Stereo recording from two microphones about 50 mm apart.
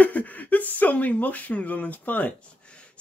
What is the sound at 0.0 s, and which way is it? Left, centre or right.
Speech, left.